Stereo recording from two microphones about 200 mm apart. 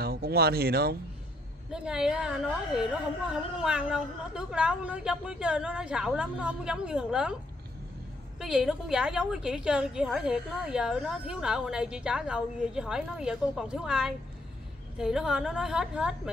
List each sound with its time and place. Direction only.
0.0 s speech: 50° right (ahead or behind)
1.7 s a woman's voice: 5° right (ahead or behind)
8.4 s a woman's voice: 5° right (ahead or behind)